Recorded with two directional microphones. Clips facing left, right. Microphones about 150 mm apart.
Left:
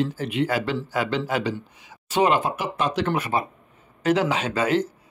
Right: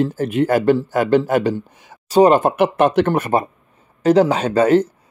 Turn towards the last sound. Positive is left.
turn(degrees=-45)  # may be behind; listen again after turning